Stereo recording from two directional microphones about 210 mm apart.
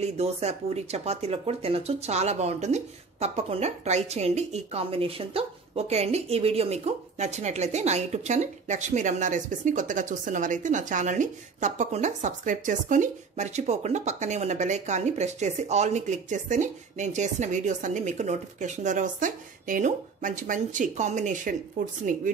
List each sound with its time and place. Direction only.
0.0 s speech: 30° right (ahead or behind)